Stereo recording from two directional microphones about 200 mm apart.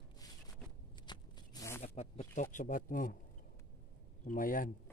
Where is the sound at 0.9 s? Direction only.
20° left (ahead or behind).